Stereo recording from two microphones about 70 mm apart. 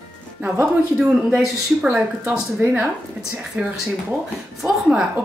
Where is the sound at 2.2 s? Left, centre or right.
Right.